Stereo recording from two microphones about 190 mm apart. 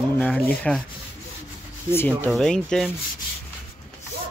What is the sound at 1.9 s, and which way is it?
Speech, 10° left (ahead or behind).